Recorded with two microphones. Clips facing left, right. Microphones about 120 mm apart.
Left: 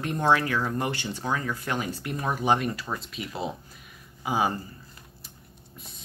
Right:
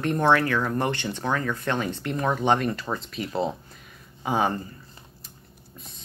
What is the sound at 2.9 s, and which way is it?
Speech, 25° right (ahead or behind).